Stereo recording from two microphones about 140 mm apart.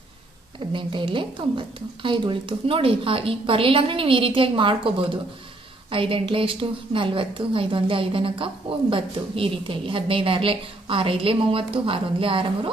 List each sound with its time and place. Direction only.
0.7 s a woman's voice: 35° right (ahead or behind)